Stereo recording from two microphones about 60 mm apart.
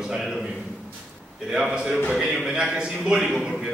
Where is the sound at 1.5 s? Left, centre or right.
Centre.